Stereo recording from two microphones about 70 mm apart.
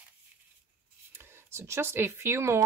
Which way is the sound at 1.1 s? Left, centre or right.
Right.